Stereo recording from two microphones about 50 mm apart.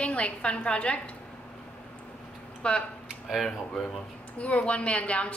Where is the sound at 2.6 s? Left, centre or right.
Left.